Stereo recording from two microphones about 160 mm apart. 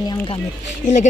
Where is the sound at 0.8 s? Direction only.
50° left (ahead or behind).